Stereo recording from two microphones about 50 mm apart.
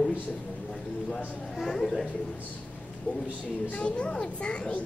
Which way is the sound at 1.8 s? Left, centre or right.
Centre.